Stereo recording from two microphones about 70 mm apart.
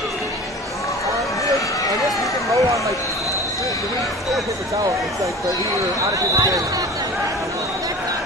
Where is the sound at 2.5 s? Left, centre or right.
Right.